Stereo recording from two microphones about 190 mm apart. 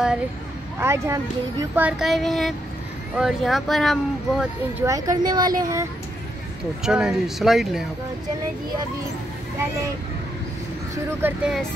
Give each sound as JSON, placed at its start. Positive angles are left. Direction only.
{"t": 0.7, "sound": "speech", "side_deg": -15}
{"t": 1.9, "sound": "speech", "side_deg": 0}
{"t": 4.7, "sound": "speech", "side_deg": -15}
{"t": 6.8, "sound": "speech", "side_deg": -5}
{"t": 11.1, "sound": "speech", "side_deg": -10}